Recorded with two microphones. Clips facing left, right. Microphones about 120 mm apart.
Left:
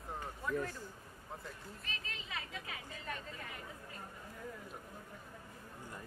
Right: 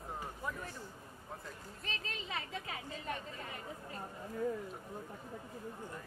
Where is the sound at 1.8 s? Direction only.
30° right (ahead or behind).